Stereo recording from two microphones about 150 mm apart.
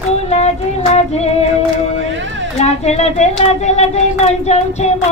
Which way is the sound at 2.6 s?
45° left (ahead or behind).